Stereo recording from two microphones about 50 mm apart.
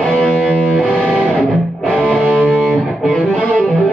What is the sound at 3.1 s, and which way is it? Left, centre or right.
Music, left.